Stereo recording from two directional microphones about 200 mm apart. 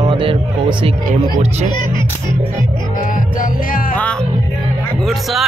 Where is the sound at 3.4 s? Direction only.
40° left (ahead or behind).